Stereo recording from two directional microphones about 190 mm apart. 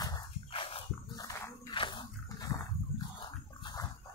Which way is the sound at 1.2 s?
20° left (ahead or behind).